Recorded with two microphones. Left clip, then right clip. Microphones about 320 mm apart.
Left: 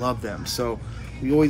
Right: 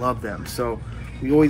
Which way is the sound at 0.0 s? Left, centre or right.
Centre.